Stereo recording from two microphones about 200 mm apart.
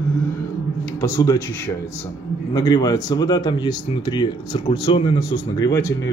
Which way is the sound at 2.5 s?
20° left (ahead or behind).